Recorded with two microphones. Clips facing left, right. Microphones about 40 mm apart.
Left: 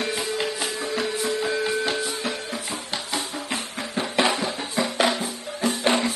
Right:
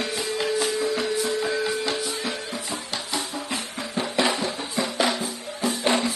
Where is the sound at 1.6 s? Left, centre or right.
Left.